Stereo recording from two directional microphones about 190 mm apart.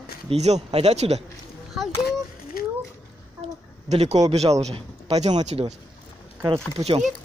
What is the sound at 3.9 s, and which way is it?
A man's voice, 35° right (ahead or behind).